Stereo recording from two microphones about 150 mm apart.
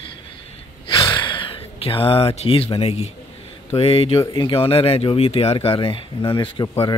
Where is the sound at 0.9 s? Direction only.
30° left (ahead or behind).